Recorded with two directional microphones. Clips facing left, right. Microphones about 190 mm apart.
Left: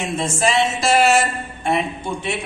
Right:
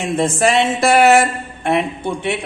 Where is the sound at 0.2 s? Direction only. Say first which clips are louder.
Right 4 dB; 55° right (ahead or behind).